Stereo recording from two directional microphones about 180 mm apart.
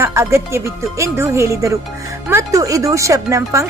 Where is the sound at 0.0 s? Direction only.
15° right (ahead or behind).